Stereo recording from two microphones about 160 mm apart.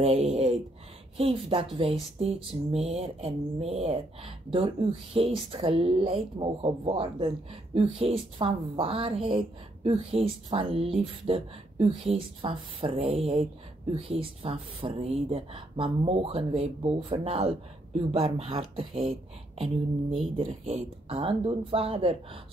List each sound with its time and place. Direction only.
0.0 s speech: 40° right (ahead or behind)